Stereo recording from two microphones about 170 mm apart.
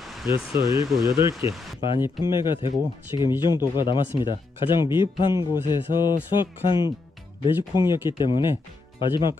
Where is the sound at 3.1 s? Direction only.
20° right (ahead or behind).